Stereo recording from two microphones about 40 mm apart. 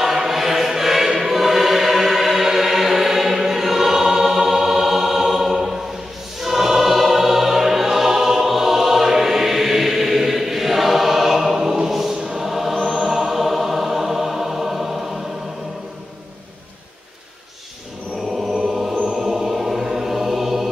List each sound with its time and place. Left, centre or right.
0.0 s choir: centre
18.7 s music: centre